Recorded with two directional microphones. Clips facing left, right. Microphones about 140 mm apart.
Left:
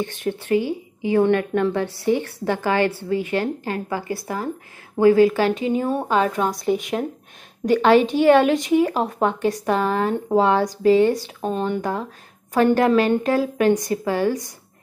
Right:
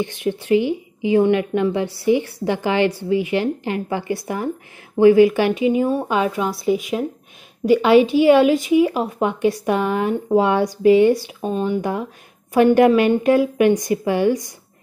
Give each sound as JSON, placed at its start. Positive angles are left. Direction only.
{"t": 0.0, "sound": "a woman's voice", "side_deg": -15}